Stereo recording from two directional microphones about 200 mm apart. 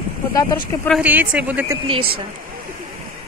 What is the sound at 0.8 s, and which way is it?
Speech, 5° right (ahead or behind).